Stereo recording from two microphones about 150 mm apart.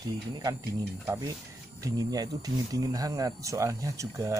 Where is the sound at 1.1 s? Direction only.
20° right (ahead or behind).